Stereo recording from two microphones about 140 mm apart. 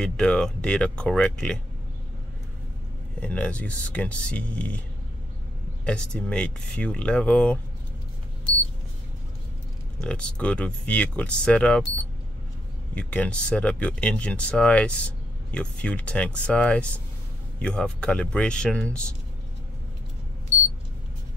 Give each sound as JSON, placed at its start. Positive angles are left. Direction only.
{"t": 0.0, "sound": "speech", "side_deg": 5}
{"t": 3.2, "sound": "speech", "side_deg": 10}
{"t": 5.9, "sound": "speech", "side_deg": 10}
{"t": 9.9, "sound": "speech", "side_deg": 5}
{"t": 12.9, "sound": "speech", "side_deg": 10}